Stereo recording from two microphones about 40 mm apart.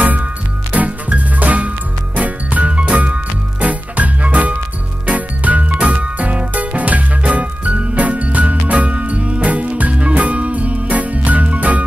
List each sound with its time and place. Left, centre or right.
0.7 s music: right